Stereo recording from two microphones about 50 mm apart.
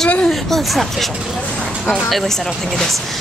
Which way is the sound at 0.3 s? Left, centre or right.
Centre.